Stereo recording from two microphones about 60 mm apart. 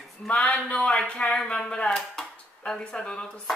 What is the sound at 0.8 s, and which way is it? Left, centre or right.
Speech, centre.